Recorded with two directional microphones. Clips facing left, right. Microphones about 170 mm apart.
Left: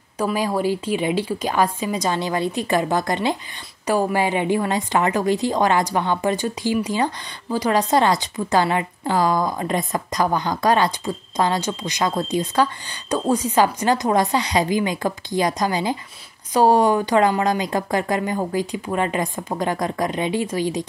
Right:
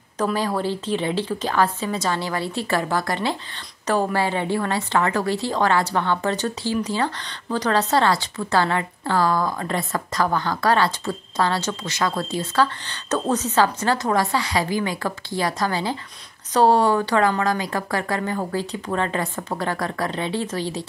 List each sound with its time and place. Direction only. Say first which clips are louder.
0.2 s a woman's voice: left 2 dB; 10° left (ahead or behind)